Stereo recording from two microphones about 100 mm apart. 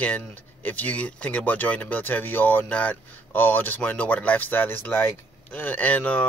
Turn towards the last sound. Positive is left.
turn(degrees=15)  # may be behind; listen again after turning